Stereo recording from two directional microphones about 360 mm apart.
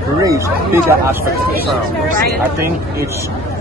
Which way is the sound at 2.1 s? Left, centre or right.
Right.